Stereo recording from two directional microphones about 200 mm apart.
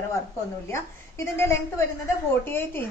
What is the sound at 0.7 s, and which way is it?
A woman's voice, 15° left (ahead or behind).